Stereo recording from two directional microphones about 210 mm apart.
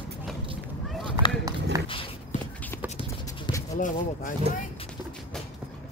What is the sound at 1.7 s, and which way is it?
Dog, 15° right (ahead or behind).